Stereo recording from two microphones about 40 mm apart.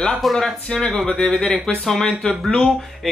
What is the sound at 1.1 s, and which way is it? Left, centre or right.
Speech, left.